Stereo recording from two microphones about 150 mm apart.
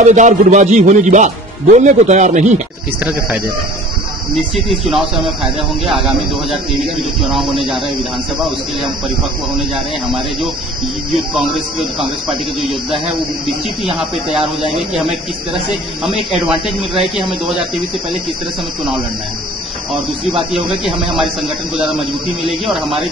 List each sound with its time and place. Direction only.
0.0 s speech: 55° right (ahead or behind)
3.0 s speech: 10° right (ahead or behind)
4.6 s speech: centre (ahead or behind)
11.3 s speech: centre (ahead or behind)
15.5 s speech: centre (ahead or behind)
20.5 s speech: centre (ahead or behind)